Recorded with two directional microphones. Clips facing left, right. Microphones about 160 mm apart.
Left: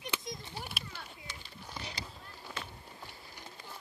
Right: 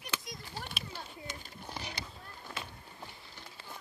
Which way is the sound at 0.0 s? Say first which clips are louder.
Left 2 dB; 20° left (ahead or behind).